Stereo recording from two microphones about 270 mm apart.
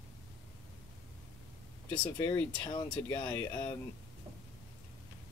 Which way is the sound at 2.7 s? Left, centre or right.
Centre.